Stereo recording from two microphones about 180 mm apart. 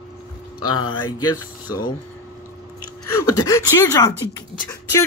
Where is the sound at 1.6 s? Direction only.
20° left (ahead or behind).